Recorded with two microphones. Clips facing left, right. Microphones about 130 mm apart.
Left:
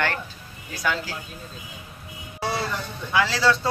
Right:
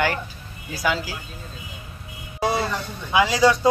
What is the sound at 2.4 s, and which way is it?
Vehicle, 15° right (ahead or behind).